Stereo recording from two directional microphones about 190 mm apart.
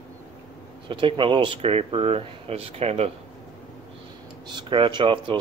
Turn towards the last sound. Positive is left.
turn(degrees=-25)  # may be behind; listen again after turning